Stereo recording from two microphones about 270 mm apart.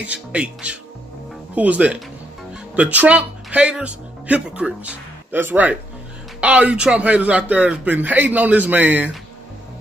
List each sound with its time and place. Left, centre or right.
0.0 s speech: centre